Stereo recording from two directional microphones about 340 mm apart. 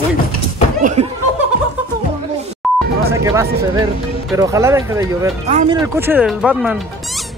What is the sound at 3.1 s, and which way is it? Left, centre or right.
Music, centre.